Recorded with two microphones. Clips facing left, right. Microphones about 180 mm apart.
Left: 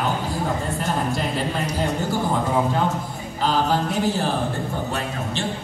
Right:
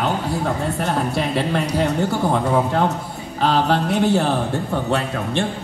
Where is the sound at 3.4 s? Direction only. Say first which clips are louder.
Right 3 dB; 65° right (ahead or behind).